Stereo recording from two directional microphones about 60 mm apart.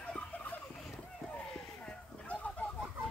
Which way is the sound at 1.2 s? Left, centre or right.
Centre.